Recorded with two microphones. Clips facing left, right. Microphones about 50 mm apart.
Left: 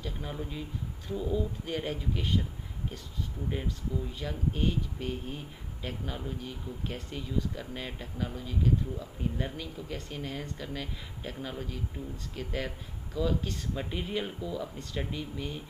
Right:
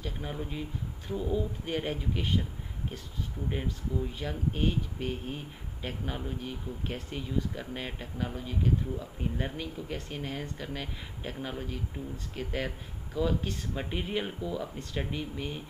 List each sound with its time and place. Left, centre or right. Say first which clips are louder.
0.0 s speech: right 1 dB; centre
3.4 s speech: right 1 dB; centre